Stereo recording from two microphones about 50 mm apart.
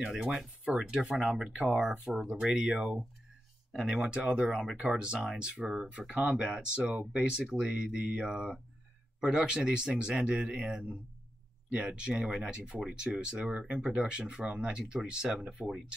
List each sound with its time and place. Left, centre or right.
0.3 s speech: centre